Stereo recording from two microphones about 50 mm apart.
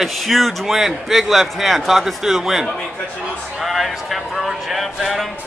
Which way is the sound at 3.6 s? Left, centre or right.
Centre.